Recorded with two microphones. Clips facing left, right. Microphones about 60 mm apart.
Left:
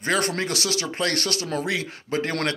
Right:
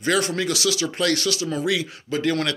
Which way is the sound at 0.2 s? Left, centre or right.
Left.